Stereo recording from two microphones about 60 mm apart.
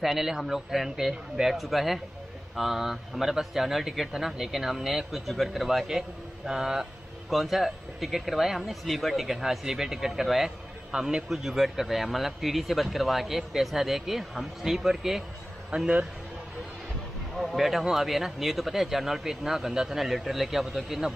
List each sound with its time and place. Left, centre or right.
0.0 s speech: centre
15.7 s a man's voice: centre
17.4 s speech: centre